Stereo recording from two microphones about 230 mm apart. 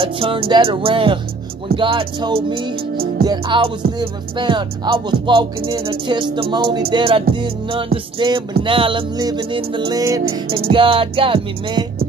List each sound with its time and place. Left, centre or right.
0.0 s music: right